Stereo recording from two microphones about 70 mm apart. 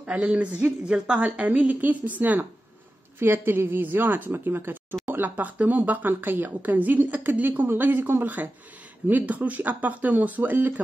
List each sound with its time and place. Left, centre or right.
0.2 s a woman's voice: centre